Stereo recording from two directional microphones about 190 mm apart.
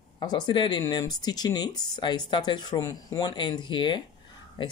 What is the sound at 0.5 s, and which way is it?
Speech, 25° left (ahead or behind).